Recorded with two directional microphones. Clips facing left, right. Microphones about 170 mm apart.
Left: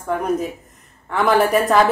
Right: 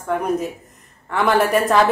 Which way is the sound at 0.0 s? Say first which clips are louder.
Even; centre (ahead or behind).